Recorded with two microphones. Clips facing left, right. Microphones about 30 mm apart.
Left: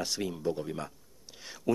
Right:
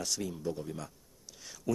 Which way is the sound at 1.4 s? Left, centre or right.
Left.